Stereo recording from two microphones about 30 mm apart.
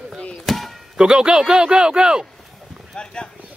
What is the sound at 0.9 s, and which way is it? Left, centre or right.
Speech, right.